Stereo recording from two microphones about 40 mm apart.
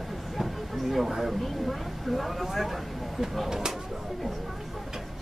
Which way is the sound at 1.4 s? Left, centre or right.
Centre.